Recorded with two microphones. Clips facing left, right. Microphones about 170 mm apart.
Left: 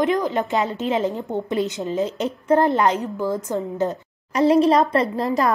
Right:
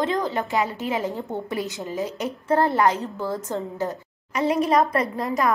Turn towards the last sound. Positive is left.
turn(degrees=30)  # may be behind; listen again after turning